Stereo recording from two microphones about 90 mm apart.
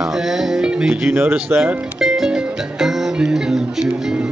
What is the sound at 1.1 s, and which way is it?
Speech, 25° right (ahead or behind).